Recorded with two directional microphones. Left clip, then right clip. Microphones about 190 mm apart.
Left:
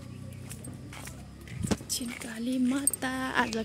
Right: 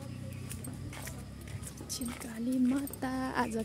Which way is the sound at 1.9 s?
10° left (ahead or behind).